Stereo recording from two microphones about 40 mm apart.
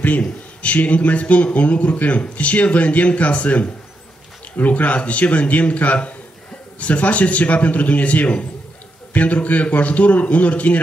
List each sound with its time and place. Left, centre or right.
0.2 s a man's voice: left